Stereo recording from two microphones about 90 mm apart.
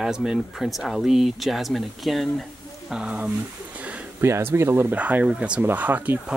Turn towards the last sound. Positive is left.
turn(degrees=-20)  # may be behind; listen again after turning